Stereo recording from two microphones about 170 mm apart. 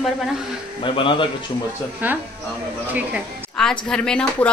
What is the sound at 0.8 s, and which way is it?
Speech, 30° left (ahead or behind).